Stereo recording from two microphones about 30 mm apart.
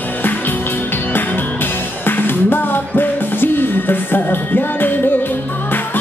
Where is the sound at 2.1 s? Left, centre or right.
Left.